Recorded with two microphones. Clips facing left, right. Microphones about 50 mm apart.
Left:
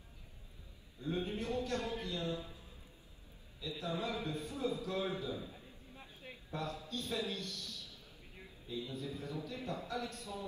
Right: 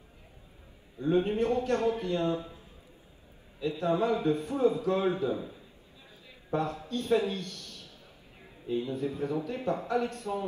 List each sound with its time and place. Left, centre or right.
0.9 s a man's voice: right
3.5 s a man's voice: right
6.5 s a man's voice: right